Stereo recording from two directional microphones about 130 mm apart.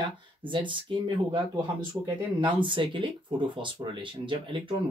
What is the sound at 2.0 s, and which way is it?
Speech, 20° right (ahead or behind).